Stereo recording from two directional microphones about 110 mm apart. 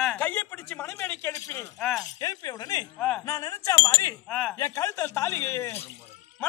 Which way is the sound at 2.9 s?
5° left (ahead or behind).